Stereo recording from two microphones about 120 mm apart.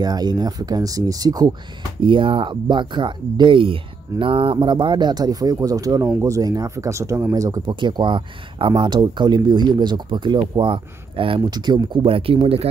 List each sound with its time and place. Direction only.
0.0 s speech: 35° right (ahead or behind)
2.0 s speech: 45° right (ahead or behind)
7.8 s speech: 40° right (ahead or behind)